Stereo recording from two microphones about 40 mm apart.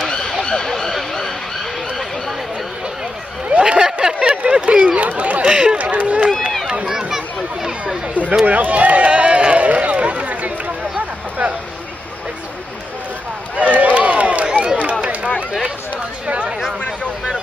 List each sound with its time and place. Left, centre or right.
0.0 s emergency vehicle: left
0.4 s vehicle: centre
3.4 s a sound: right
4.9 s chatter: right
5.5 s chatter: right
6.0 s run: right
6.9 s chatter: centre
8.1 s a sound: right
8.5 s run: right
11.0 s a sound: right
13.7 s a sound: right
14.8 s run: right
16.3 s chatter: right